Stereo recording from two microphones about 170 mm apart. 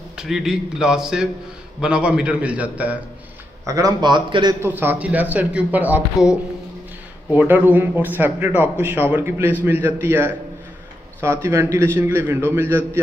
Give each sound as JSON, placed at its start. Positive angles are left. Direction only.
{"t": 0.2, "sound": "a man's voice", "side_deg": -5}
{"t": 3.6, "sound": "a man's voice", "side_deg": -20}
{"t": 4.6, "sound": "a man's voice", "side_deg": -10}
{"t": 7.3, "sound": "a man's voice", "side_deg": -10}